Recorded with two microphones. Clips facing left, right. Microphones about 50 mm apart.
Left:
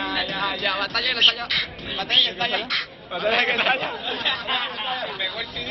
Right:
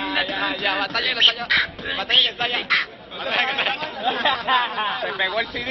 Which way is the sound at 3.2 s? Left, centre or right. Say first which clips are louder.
Left 1 dB; centre.